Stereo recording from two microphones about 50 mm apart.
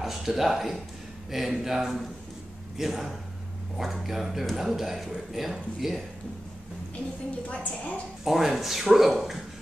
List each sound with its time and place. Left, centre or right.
0.0 s speech: centre
7.4 s a woman's voice: left
8.2 s speech: centre